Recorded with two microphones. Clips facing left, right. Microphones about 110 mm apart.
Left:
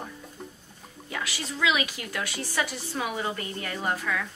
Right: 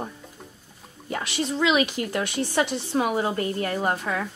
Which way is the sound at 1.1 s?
25° right (ahead or behind).